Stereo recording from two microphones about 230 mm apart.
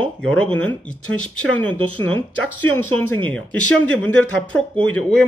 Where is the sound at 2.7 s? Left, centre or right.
Centre.